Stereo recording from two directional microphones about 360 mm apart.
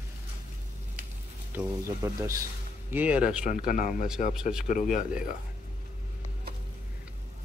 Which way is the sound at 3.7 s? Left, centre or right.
Left.